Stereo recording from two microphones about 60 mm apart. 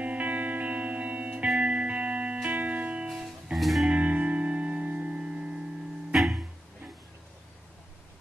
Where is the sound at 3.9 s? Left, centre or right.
Right.